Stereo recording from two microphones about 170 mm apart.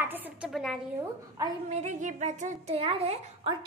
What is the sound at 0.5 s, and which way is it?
Speech, centre (ahead or behind).